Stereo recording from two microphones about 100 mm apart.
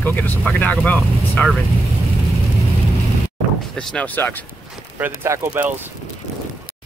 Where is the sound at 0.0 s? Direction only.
20° left (ahead or behind).